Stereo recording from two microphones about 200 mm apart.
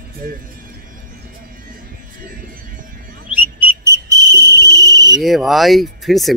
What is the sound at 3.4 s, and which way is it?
Whistle, 10° right (ahead or behind).